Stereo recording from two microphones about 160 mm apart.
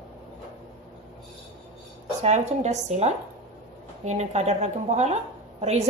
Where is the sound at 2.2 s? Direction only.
45° right (ahead or behind).